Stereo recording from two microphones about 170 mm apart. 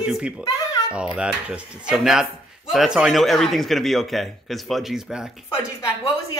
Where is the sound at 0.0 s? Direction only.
5° right (ahead or behind).